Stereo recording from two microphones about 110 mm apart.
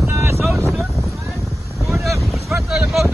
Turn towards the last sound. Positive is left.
turn(degrees=0)  # may be behind; listen again after turning